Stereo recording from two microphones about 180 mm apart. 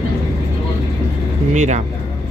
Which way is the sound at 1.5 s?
40° right (ahead or behind).